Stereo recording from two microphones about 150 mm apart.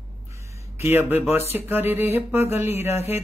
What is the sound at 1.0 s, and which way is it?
Speech, 15° right (ahead or behind).